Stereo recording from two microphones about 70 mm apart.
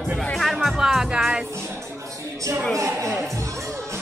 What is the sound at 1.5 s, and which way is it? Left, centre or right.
Music, right.